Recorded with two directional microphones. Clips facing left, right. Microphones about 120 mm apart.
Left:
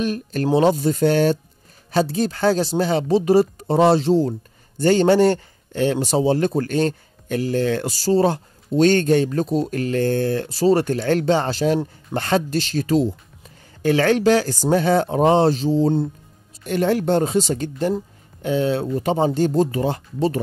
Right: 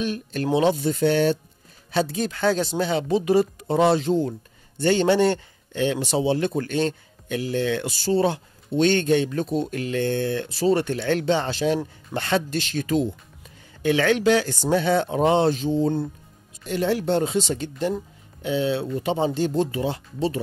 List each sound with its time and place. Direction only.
0.0 s speech: 45° left (ahead or behind)
16.6 s speech: 50° left (ahead or behind)